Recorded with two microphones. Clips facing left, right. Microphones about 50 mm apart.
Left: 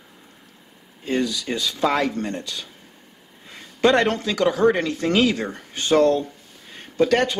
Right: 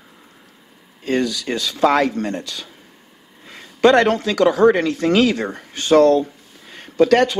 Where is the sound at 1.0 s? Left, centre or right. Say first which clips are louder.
Right 3 dB; centre.